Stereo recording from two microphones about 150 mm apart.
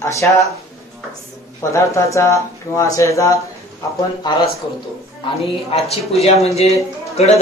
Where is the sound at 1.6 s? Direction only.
20° left (ahead or behind).